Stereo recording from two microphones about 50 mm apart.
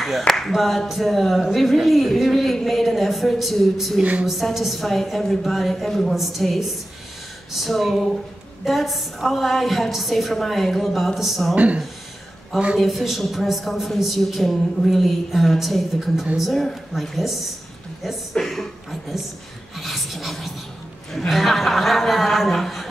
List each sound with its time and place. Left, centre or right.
0.3 s speech: centre
4.0 s a woman's voice: right
4.3 s speech: centre
11.5 s a woman's voice: right
12.7 s speech: centre
18.4 s speech: centre
19.7 s a sound: centre
21.3 s speech: centre